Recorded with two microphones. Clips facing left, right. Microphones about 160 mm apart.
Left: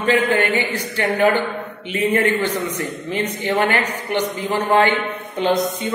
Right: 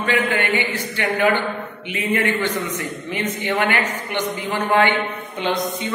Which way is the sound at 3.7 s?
40° left (ahead or behind).